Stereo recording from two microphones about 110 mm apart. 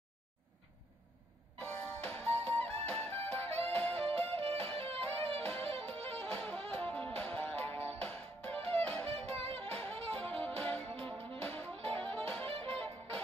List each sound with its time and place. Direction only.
1.6 s music: 15° left (ahead or behind)
9.1 s music: 65° right (ahead or behind)
9.7 s music: 10° left (ahead or behind)